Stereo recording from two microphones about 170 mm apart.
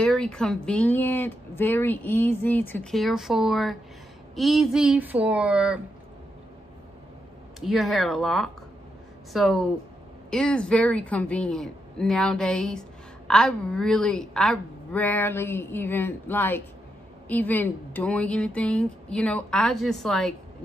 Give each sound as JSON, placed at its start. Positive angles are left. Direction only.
{"t": 0.0, "sound": "speech", "side_deg": 5}
{"t": 7.6, "sound": "a woman's voice", "side_deg": 0}